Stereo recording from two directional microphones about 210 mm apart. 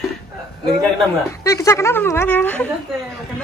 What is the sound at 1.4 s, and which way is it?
A woman's voice, 15° left (ahead or behind).